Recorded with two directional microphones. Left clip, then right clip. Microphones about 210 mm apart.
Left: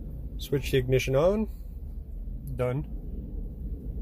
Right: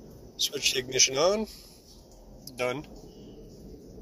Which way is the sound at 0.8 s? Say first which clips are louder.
Left 1 dB; 5° left (ahead or behind).